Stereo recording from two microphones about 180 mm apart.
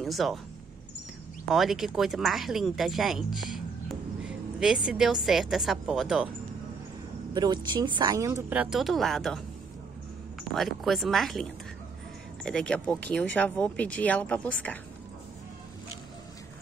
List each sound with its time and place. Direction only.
0.0 s speech: centre (ahead or behind)
1.5 s speech: centre (ahead or behind)
7.3 s a woman's voice: 25° right (ahead or behind); by 9.4 s centre (ahead or behind)
10.5 s speech: centre (ahead or behind)
12.4 s speech: 5° left (ahead or behind)